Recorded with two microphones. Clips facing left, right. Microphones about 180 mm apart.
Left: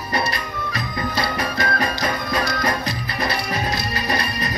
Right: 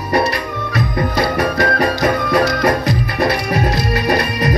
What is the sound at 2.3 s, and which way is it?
Music, 60° right (ahead or behind).